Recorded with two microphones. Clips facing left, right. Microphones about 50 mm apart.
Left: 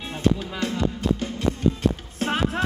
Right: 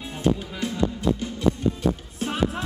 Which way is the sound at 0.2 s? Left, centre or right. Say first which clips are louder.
Left 1 dB; left.